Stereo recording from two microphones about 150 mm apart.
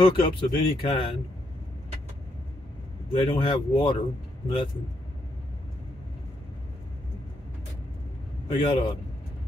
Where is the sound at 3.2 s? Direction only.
30° left (ahead or behind).